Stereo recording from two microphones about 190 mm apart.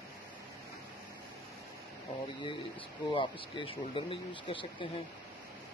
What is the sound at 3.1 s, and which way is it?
Speech, 25° left (ahead or behind).